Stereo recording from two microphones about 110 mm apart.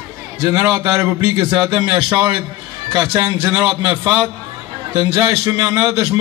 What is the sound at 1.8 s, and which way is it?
Speech, 40° right (ahead or behind).